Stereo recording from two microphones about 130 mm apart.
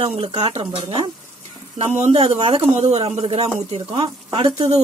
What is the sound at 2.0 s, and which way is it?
Speech, 55° right (ahead or behind).